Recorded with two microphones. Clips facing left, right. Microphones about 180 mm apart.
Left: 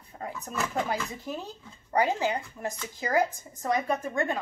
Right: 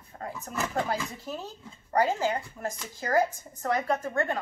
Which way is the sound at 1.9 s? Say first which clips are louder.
Even; 15° left (ahead or behind).